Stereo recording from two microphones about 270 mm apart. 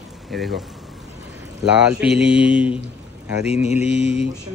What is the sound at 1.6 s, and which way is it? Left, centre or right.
Speech, centre.